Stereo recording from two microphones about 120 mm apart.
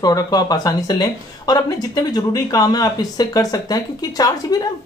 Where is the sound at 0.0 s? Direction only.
30° left (ahead or behind).